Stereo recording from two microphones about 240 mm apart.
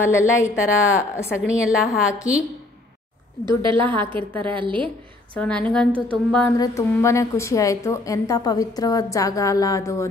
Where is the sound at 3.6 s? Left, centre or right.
Right.